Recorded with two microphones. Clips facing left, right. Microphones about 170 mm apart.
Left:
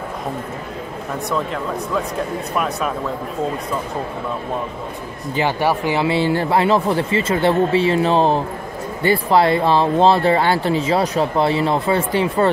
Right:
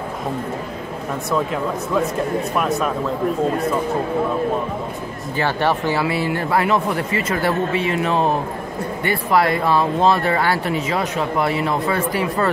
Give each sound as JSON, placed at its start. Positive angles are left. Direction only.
{"t": 2.5, "sound": "speech", "side_deg": 0}
{"t": 5.3, "sound": "speech", "side_deg": 15}